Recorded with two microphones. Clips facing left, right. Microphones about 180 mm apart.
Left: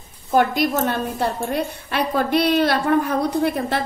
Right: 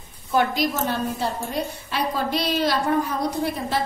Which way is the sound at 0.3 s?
55° left (ahead or behind).